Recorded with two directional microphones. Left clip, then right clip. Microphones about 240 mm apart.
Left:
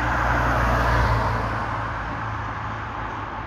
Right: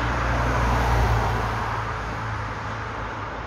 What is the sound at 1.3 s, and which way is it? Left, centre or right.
Vehicle, right.